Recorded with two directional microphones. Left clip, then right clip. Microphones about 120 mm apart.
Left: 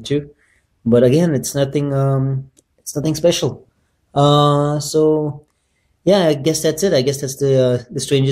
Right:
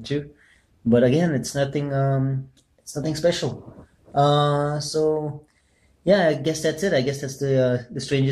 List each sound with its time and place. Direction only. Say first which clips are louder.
0.8 s speech: left 6 dB; 35° left (ahead or behind)